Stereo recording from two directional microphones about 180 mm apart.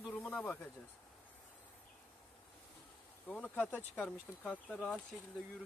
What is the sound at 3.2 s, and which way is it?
Speech, 10° left (ahead or behind).